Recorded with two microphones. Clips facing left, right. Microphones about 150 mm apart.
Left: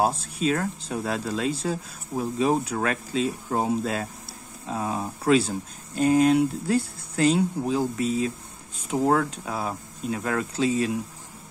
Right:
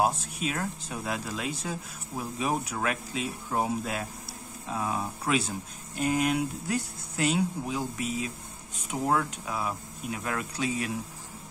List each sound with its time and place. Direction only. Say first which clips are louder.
0.0 s speech: left 4 dB; 30° left (ahead or behind)